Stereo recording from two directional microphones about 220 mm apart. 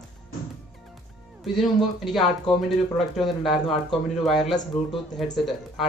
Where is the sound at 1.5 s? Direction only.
Centre (ahead or behind).